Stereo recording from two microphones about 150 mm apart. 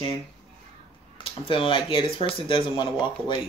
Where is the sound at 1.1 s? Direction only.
35° left (ahead or behind).